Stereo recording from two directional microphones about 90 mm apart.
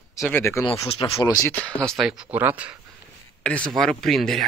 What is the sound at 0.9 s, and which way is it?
Speech, 90° left.